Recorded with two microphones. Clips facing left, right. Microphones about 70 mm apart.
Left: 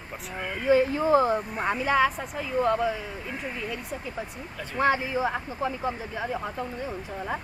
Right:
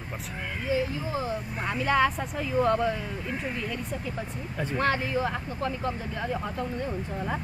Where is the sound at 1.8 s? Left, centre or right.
Centre.